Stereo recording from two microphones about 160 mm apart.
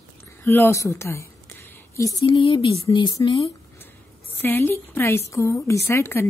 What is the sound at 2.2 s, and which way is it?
Speech, 30° left (ahead or behind).